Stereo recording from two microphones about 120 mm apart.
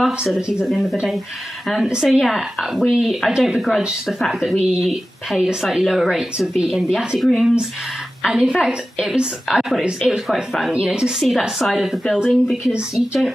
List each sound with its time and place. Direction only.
0.0 s a woman's voice: 5° right (ahead or behind)